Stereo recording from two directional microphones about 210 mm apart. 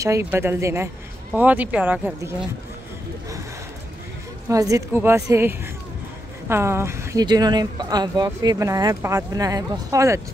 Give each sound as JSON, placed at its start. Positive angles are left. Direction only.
{"t": 0.0, "sound": "speech", "side_deg": -10}
{"t": 4.5, "sound": "speech", "side_deg": -15}